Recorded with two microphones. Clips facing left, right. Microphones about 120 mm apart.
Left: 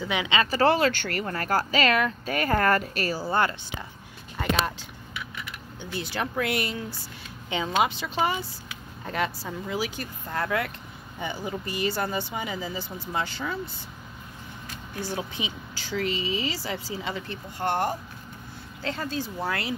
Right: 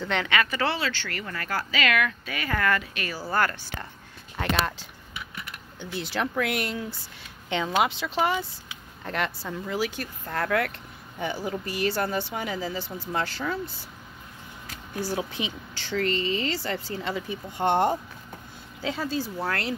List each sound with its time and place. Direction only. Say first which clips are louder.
0.0 s speech: even; 10° left (ahead or behind)
0.3 s speech: left 7 dB; 30° left (ahead or behind)
3.2 s speech: right 1 dB; 20° left (ahead or behind)
4.4 s speech: even; centre (ahead or behind)
5.8 s speech: right 1 dB; centre (ahead or behind)
15.0 s speech: right 3 dB; 5° right (ahead or behind)
17.3 s speech: right 5 dB; 20° right (ahead or behind)
18.8 s speech: right 2 dB; 5° right (ahead or behind)